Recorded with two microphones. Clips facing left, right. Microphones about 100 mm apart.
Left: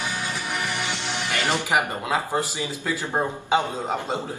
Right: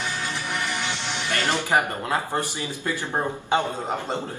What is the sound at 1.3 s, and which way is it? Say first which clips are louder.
A man's voice: right 1 dB; 20° left (ahead or behind).